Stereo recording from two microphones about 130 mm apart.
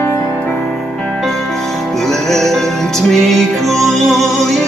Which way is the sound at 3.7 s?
Centre (ahead or behind).